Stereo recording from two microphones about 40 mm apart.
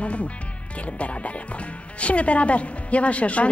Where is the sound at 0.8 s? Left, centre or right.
Left.